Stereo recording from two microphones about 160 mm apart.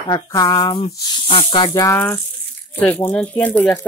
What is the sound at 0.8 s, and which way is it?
Speech, 35° left (ahead or behind).